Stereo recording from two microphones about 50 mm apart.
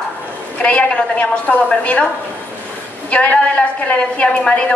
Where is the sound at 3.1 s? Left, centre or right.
Left.